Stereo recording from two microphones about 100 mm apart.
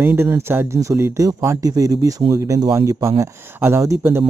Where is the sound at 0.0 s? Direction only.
25° right (ahead or behind).